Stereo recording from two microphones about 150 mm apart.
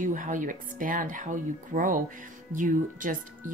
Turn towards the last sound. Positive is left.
turn(degrees=-60)  # may be behind; listen again after turning